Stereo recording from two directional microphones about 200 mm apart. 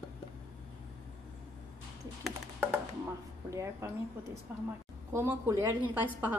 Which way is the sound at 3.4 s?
15° right (ahead or behind).